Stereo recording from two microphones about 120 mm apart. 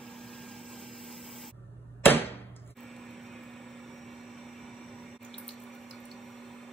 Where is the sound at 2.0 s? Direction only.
15° left (ahead or behind).